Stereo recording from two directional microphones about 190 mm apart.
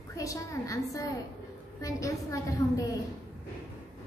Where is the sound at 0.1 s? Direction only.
15° left (ahead or behind).